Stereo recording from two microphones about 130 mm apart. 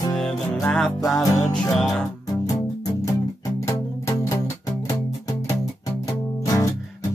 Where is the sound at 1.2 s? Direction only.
30° left (ahead or behind).